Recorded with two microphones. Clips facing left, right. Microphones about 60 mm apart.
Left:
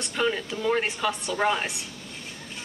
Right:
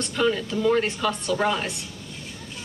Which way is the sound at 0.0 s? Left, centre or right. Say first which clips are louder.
Right 3 dB; centre.